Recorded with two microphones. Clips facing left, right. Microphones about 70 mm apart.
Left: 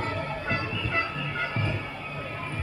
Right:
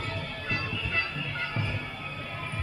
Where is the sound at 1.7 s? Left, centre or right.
Centre.